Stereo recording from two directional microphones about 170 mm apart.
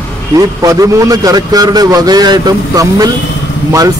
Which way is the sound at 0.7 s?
20° right (ahead or behind).